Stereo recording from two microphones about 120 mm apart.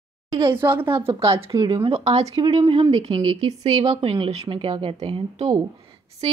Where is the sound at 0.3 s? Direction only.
25° right (ahead or behind).